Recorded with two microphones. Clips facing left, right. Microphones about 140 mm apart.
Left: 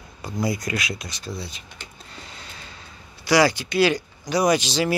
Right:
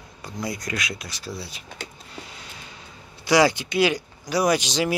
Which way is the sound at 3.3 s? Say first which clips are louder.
Even; 20° right (ahead or behind).